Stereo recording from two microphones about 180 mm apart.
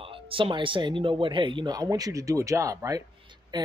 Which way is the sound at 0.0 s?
30° right (ahead or behind).